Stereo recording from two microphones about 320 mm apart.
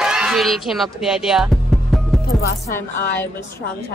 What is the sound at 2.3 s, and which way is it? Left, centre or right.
Speech, left.